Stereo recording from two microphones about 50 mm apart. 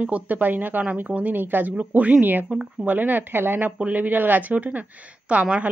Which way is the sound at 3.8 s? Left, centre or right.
Right.